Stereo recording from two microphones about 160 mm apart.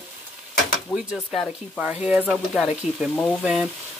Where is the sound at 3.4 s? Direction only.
10° right (ahead or behind).